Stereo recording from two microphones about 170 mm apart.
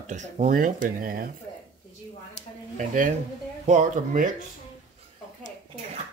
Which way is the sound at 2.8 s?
50° right (ahead or behind).